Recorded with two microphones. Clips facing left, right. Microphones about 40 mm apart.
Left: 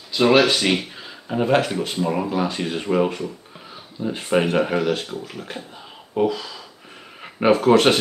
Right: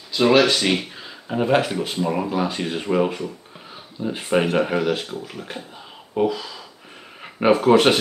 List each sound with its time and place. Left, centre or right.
0.1 s speech: centre